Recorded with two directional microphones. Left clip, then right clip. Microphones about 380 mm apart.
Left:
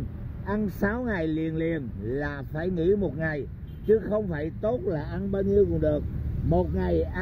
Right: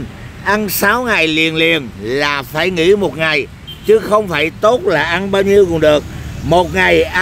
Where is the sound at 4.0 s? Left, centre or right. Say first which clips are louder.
Right 15 dB; centre.